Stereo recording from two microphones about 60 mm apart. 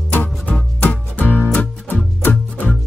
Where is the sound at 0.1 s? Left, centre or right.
Left.